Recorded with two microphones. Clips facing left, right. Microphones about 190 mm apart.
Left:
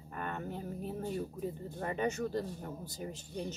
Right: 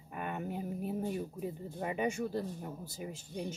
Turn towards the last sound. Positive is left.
turn(degrees=-10)  # may be behind; listen again after turning